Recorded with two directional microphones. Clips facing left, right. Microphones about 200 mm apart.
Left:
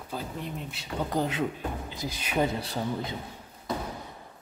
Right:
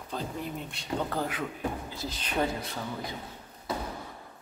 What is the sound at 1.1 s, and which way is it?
Speech, 20° left (ahead or behind).